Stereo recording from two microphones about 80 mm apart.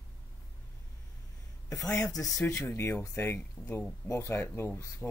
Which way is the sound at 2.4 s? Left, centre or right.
Left.